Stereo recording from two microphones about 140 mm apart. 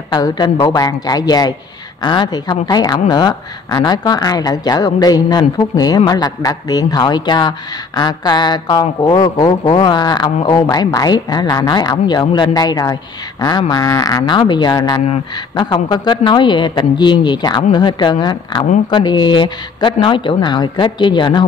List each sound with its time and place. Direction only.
0.1 s a woman's voice: 30° left (ahead or behind)